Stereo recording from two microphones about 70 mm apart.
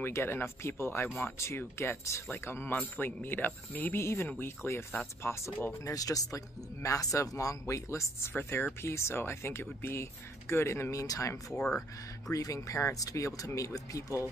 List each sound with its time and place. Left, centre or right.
0.0 s speech: left
4.6 s speech: left
5.2 s speech: left
5.9 s speech: left
11.5 s speech: centre
12.3 s speech: left